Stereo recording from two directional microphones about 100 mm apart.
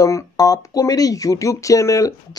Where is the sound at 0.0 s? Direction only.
35° left (ahead or behind).